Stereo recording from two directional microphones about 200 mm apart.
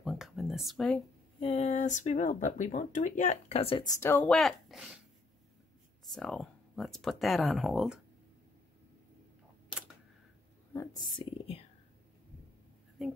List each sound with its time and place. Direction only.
0.0 s a sound: centre (ahead or behind)
1.4 s speech: 35° left (ahead or behind)
4.0 s speech: 10° left (ahead or behind)
6.1 s speech: 5° left (ahead or behind)
10.7 s speech: 15° left (ahead or behind)
13.0 s speech: centre (ahead or behind)